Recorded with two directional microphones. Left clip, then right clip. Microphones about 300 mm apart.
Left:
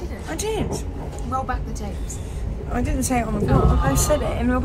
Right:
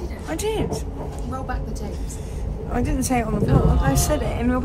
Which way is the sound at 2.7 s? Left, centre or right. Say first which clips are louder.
Even; centre.